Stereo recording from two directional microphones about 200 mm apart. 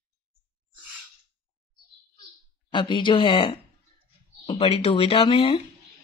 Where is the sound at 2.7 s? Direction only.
25° left (ahead or behind).